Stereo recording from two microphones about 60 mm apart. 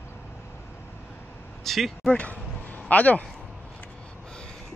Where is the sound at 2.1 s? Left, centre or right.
Left.